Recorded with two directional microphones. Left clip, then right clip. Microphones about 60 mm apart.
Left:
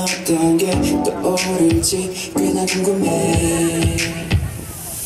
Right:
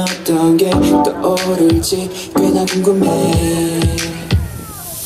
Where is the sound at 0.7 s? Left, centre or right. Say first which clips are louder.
Right 6 dB; right.